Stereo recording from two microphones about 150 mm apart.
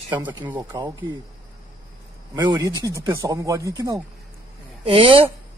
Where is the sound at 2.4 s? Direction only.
30° right (ahead or behind).